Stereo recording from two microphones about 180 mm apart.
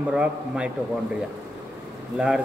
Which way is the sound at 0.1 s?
5° right (ahead or behind).